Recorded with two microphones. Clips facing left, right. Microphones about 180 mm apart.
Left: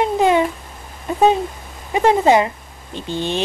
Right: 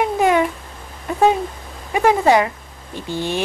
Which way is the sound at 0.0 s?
25° left (ahead or behind).